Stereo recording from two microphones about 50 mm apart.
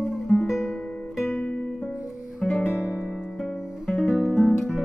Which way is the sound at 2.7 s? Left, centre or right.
Left.